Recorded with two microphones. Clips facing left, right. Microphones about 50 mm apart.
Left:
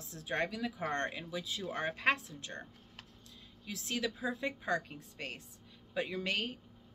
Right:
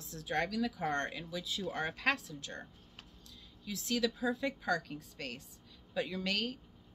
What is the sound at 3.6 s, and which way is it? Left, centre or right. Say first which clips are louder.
Speech: right 3 dB; left.